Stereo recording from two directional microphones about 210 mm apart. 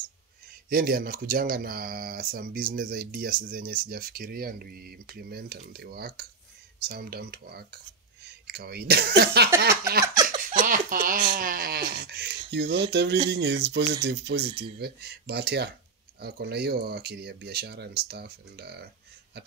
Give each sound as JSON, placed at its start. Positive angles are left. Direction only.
{"t": 0.7, "sound": "speech", "side_deg": -45}